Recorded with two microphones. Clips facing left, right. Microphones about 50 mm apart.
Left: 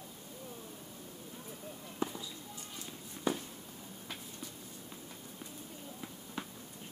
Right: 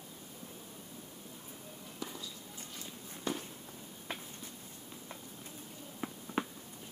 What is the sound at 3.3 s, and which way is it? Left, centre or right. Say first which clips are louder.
Walk: left 3 dB; left.